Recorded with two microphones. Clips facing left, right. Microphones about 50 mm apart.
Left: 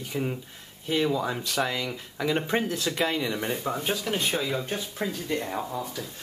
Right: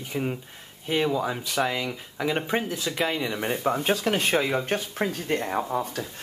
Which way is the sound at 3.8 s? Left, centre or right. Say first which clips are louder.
Right 4 dB; right.